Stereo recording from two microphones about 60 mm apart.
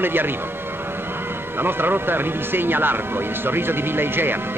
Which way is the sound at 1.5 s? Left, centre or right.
Right.